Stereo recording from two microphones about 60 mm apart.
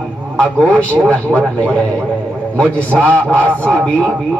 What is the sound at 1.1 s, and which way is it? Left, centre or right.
A man's voice, left.